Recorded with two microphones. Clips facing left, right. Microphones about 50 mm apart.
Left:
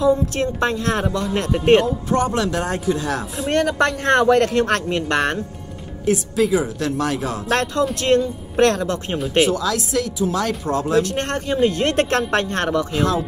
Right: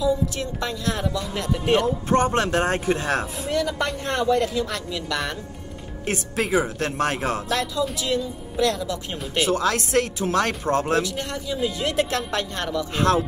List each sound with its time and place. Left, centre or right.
0.0 s speech: left
2.0 s speech: right
3.4 s a man's voice: left
6.0 s speech: right
7.4 s a man's voice: left
9.1 s speech: left
9.5 s speech: right
11.0 s speech: left
12.9 s speech: right